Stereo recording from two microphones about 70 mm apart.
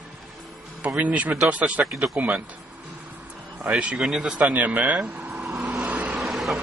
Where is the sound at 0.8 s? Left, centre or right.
Right.